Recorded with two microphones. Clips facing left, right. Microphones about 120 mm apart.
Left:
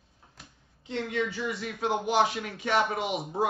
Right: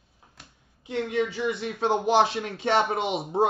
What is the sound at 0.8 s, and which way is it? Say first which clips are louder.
Speech: right 4 dB; 20° right (ahead or behind).